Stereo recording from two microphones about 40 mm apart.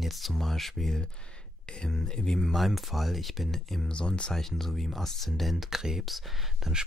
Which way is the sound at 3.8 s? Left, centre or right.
Left.